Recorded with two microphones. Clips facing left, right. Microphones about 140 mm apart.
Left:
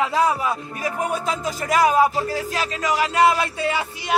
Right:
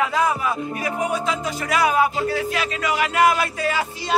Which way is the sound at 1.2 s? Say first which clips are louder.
Even; 40° left (ahead or behind).